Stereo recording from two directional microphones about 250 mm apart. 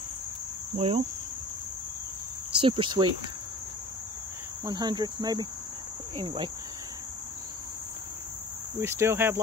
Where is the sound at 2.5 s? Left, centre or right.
Centre.